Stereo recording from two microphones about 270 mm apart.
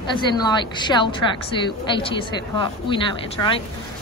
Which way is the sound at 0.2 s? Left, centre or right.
Centre.